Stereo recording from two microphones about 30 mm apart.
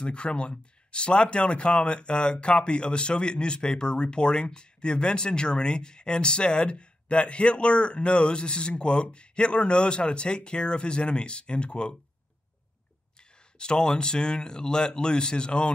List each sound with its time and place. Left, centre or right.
0.0 s speech: left
13.6 s speech: left